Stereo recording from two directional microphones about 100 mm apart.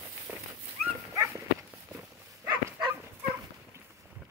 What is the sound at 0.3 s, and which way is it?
Dog, 15° right (ahead or behind).